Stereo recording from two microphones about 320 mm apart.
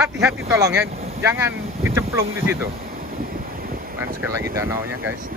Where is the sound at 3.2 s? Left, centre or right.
Right.